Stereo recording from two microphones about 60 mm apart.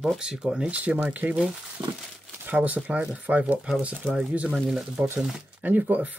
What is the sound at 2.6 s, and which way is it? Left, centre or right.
Speech, right.